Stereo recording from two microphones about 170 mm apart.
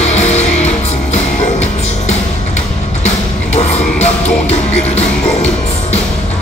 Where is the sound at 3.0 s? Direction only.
40° left (ahead or behind).